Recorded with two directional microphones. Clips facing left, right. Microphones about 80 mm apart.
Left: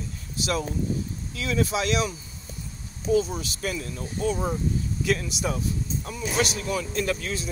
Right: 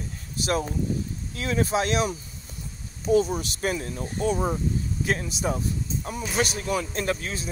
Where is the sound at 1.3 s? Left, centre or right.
Right.